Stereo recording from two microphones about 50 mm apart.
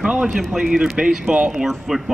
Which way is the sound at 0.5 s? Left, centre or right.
Centre.